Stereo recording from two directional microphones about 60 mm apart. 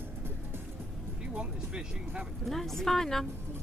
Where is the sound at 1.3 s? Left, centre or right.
Centre.